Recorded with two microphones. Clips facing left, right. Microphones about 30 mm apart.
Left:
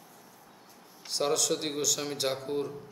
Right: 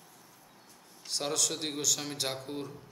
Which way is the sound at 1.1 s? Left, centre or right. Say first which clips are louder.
Left 5 dB; centre.